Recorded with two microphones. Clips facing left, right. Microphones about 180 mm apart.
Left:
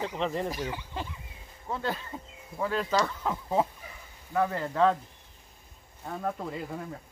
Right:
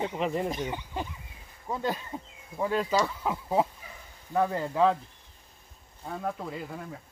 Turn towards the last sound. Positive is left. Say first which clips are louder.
# left 1 dB
turn(degrees=0)  # may be behind; listen again after turning